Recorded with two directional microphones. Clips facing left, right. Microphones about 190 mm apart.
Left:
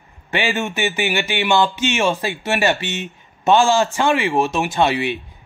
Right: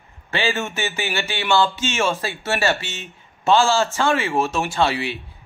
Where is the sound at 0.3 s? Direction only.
15° left (ahead or behind).